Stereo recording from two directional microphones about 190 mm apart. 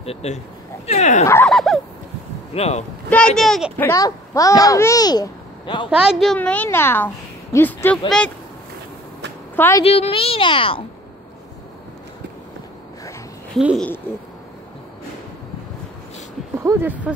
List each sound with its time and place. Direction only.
0.0 s speech: 35° left (ahead or behind)
1.2 s a woman's voice: 15° left (ahead or behind)
1.5 s a child's voice: centre (ahead or behind)
2.5 s speech: 35° left (ahead or behind)
3.1 s a child's voice: 5° left (ahead or behind)
3.8 s a child's voice: 15° left (ahead or behind)
5.9 s a woman's voice: centre (ahead or behind)
9.6 s a woman's voice: 15° left (ahead or behind)
9.8 s speech: 30° left (ahead or behind)
13.6 s a child's voice: 5° right (ahead or behind)
16.6 s speech: 10° right (ahead or behind)